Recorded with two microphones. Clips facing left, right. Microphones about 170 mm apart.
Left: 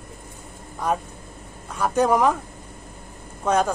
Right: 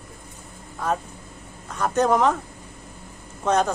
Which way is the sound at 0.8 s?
15° left (ahead or behind).